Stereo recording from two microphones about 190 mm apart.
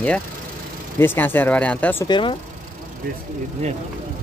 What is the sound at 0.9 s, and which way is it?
Speech, 10° left (ahead or behind).